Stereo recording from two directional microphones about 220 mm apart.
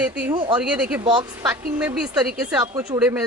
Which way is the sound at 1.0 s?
20° right (ahead or behind).